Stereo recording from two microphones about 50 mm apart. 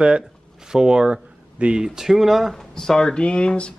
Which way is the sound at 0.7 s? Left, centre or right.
Centre.